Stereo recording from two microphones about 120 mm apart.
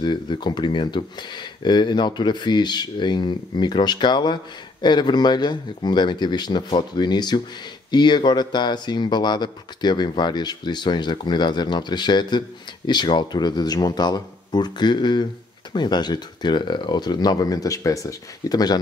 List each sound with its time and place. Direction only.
0.0 s speech: 40° left (ahead or behind)